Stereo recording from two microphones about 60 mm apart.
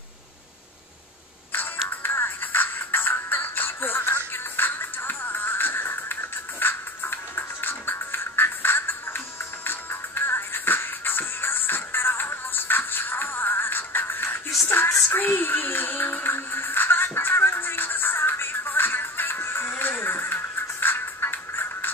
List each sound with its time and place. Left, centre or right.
1.9 s music: left